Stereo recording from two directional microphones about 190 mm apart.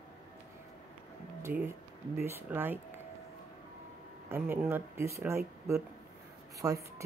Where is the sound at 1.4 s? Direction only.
15° right (ahead or behind).